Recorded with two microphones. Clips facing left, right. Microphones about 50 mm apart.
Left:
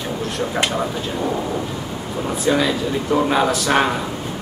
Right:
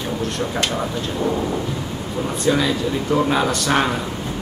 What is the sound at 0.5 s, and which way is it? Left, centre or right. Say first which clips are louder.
Speech: left 3 dB; centre.